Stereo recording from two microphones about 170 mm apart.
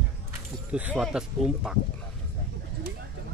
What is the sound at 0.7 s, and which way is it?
Speech, 5° right (ahead or behind).